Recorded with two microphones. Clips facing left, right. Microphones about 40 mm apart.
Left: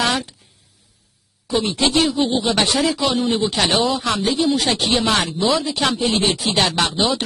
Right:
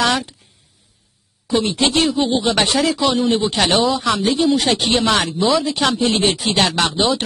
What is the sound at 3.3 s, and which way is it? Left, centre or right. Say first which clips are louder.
Speech: right 2 dB; right.